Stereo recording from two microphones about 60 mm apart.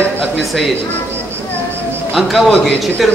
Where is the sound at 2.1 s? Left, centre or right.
Centre.